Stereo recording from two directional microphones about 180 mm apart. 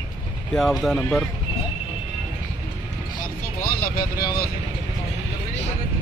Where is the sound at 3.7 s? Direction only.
55° left (ahead or behind).